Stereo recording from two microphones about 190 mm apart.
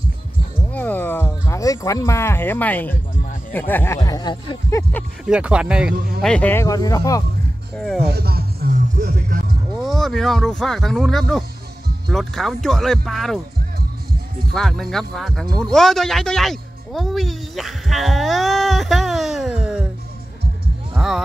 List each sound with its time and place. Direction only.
0.7 s a sound: 10° left (ahead or behind)
3.5 s speech: 10° left (ahead or behind)
5.2 s speech: 5° right (ahead or behind)
6.3 s speech: 10° left (ahead or behind)
7.7 s speech: centre (ahead or behind)
8.0 s music: 55° right (ahead or behind)
9.8 s speech: centre (ahead or behind)
14.5 s speech: centre (ahead or behind)
15.5 s music: 5° left (ahead or behind)
20.9 s music: centre (ahead or behind)